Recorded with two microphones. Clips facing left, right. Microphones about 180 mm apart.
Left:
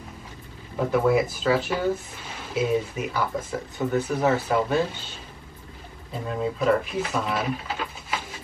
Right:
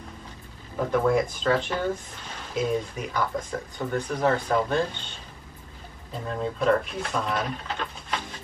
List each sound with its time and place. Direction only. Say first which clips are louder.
0.7 s speech: left 2 dB; 5° left (ahead or behind)